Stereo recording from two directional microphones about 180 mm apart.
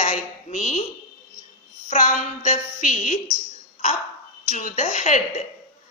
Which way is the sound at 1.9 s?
45° left (ahead or behind).